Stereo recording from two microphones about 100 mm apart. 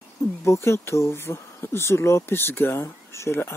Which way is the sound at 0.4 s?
30° left (ahead or behind).